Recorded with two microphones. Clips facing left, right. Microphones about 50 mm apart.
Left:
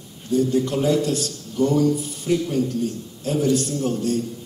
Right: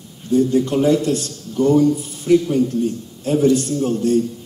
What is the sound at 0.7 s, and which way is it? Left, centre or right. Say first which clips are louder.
A man's voice: right 4 dB; right.